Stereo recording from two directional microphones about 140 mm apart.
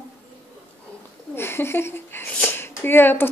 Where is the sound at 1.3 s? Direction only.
15° left (ahead or behind).